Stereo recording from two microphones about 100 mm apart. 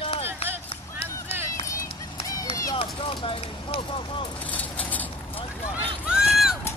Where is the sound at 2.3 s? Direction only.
35° left (ahead or behind).